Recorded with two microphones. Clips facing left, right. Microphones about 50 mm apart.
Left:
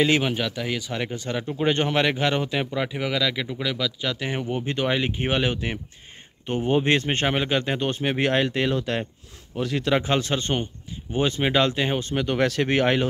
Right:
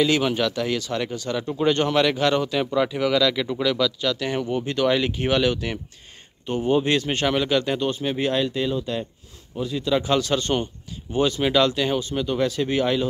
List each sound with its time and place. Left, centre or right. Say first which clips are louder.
0.0 s speech: right 1 dB; left
9.9 s speech: right 3 dB; left